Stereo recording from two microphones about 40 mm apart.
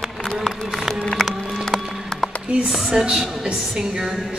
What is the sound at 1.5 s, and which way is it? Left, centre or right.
Music, centre.